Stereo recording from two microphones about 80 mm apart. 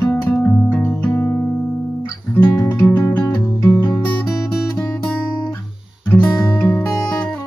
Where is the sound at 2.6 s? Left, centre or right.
Left.